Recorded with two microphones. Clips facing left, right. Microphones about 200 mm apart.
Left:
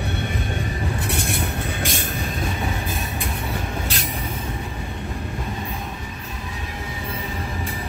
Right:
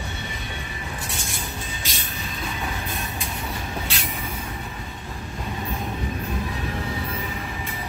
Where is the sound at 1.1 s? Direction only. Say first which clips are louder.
Left 8 dB; 60° left (ahead or behind).